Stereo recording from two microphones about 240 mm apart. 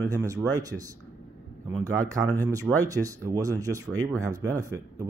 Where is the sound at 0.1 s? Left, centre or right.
Centre.